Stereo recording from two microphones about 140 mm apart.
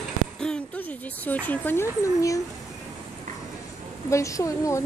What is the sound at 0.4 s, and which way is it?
Speech, 10° left (ahead or behind).